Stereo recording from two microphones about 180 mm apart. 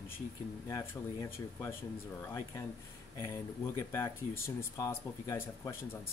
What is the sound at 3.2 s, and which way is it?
Speech, 15° left (ahead or behind).